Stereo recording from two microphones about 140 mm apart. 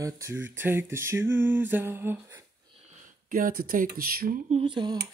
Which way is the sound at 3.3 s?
90° right.